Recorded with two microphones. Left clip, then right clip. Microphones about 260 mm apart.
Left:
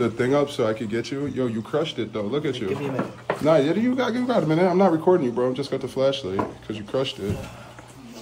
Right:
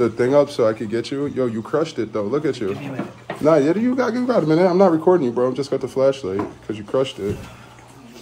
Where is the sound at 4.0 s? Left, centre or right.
Right.